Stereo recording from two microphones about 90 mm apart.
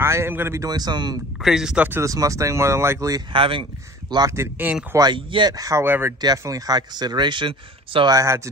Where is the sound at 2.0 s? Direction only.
40° right (ahead or behind).